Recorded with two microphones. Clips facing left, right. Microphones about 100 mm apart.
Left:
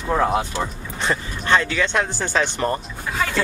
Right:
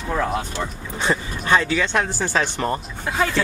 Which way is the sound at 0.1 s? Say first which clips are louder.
Left 4 dB; 20° left (ahead or behind).